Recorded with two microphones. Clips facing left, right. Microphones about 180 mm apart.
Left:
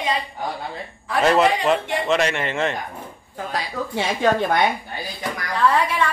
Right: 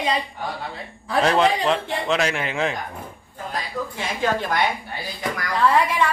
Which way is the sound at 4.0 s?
60° left (ahead or behind).